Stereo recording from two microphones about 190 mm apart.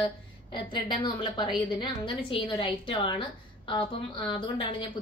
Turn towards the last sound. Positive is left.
turn(degrees=25)  # may be behind; listen again after turning